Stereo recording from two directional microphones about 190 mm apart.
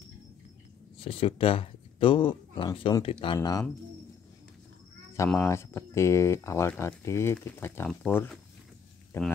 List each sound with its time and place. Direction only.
0.9 s speech: 30° left (ahead or behind)
5.4 s speech: 15° left (ahead or behind)